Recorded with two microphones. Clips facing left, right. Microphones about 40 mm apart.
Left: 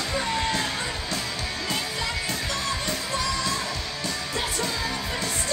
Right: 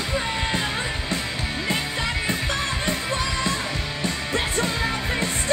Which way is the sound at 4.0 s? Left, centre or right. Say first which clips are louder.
Right 4 dB; right.